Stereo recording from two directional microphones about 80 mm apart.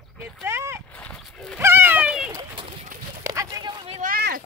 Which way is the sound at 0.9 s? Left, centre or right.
Centre.